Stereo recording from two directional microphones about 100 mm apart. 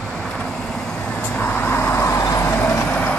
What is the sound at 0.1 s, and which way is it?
Vehicle, 10° left (ahead or behind).